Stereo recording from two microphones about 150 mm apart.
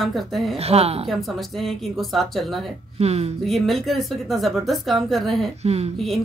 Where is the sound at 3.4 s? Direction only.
Centre (ahead or behind).